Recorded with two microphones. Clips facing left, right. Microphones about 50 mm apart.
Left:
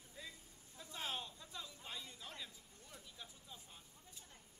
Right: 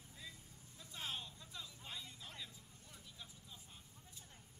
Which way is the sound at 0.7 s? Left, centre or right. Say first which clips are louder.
Left 2 dB; centre.